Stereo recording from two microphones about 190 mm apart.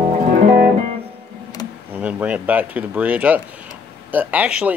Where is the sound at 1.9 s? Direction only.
10° right (ahead or behind).